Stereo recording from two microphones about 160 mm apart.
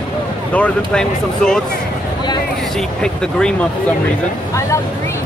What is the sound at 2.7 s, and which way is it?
Speech, 5° left (ahead or behind).